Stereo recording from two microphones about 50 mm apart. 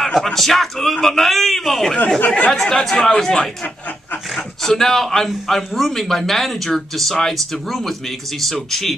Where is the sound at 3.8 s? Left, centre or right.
Left.